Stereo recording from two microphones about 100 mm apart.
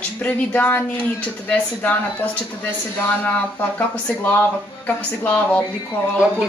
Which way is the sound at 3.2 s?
15° left (ahead or behind).